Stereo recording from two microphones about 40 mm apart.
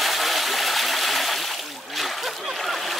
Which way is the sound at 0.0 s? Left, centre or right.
Centre.